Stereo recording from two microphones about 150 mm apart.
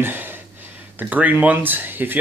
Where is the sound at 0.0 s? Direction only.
15° right (ahead or behind).